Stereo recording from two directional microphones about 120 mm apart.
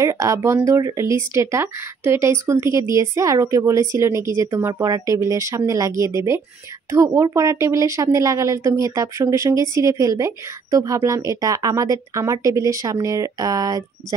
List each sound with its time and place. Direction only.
0.0 s speech: 25° right (ahead or behind)